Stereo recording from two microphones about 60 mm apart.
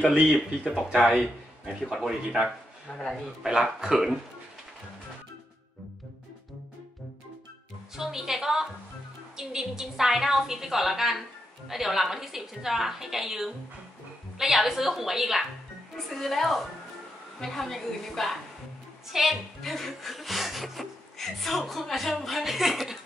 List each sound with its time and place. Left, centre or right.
0.7 s a woman's voice: centre
2.9 s a man's voice: centre
3.4 s a man's voice: centre
7.9 s a woman's voice: centre